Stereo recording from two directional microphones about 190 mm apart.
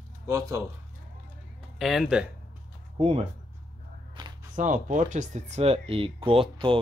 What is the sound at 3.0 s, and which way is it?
Speech, 30° right (ahead or behind).